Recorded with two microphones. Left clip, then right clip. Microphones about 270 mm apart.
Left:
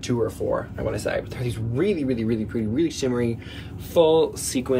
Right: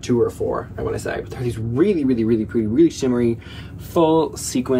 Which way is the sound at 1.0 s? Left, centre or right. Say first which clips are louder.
Even; centre.